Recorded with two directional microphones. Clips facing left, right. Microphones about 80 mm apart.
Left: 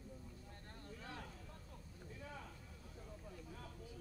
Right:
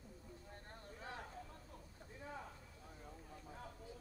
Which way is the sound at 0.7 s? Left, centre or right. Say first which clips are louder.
Right 1 dB; right.